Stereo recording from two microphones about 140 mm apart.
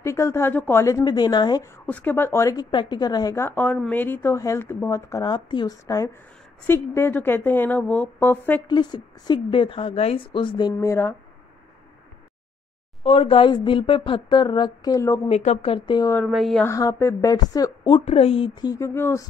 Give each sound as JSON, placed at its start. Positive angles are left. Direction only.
{"t": 0.0, "sound": "a woman's voice", "side_deg": 20}
{"t": 1.9, "sound": "a woman's voice", "side_deg": 10}
{"t": 2.7, "sound": "a woman's voice", "side_deg": 35}
{"t": 8.6, "sound": "speech", "side_deg": 30}
{"t": 10.8, "sound": "a woman's voice", "side_deg": 20}
{"t": 13.0, "sound": "speech", "side_deg": 40}
{"t": 15.2, "sound": "speech", "side_deg": 50}
{"t": 16.3, "sound": "a sound", "side_deg": 0}
{"t": 16.6, "sound": "a woman's voice", "side_deg": 20}
{"t": 17.9, "sound": "speech", "side_deg": 45}